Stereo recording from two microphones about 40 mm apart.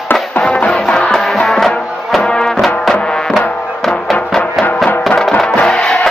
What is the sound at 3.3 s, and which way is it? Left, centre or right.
Music, centre.